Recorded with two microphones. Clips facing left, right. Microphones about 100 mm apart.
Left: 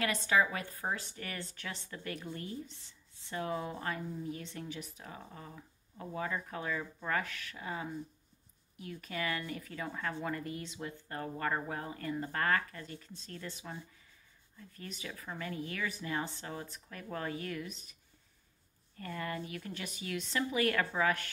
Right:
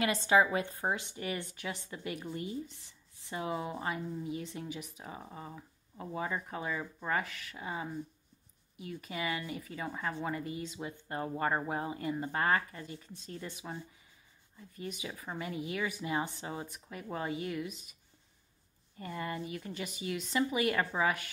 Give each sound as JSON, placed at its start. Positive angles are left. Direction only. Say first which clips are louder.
{"t": 0.3, "sound": "speech", "louder": "right 4 dB", "side_deg": -25}
{"t": 18.9, "sound": "speech", "louder": "right 1 dB", "side_deg": -10}